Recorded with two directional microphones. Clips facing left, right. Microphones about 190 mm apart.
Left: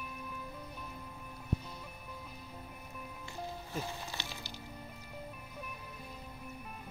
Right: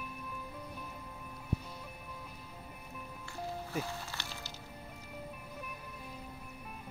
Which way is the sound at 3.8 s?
15° left (ahead or behind).